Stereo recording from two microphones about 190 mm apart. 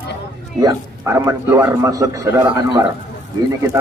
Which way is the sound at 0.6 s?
15° right (ahead or behind).